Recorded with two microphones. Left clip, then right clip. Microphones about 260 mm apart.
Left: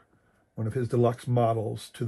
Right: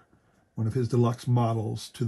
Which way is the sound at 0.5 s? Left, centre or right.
Right.